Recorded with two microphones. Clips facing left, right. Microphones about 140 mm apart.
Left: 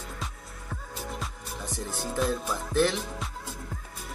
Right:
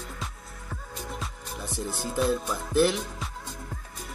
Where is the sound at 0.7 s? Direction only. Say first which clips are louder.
Even; centre (ahead or behind).